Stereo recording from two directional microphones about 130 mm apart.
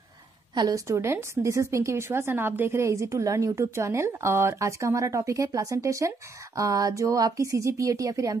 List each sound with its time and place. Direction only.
0.6 s a woman's voice: 25° right (ahead or behind)